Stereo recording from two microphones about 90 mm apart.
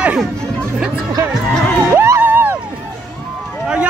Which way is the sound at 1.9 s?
25° right (ahead or behind).